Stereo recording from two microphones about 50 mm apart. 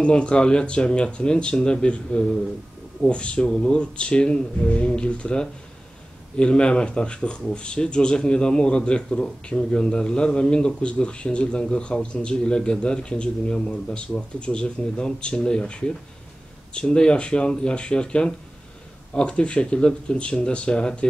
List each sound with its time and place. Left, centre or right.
0.0 s speech: left